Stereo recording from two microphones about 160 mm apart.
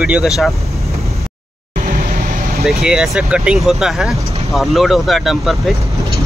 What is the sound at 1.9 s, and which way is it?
Vehicle, 60° right (ahead or behind).